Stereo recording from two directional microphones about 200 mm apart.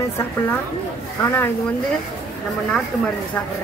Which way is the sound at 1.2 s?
10° left (ahead or behind).